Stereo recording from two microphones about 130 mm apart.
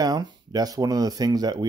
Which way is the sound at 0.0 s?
30° right (ahead or behind).